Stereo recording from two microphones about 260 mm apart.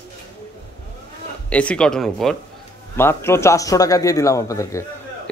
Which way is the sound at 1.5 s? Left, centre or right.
Centre.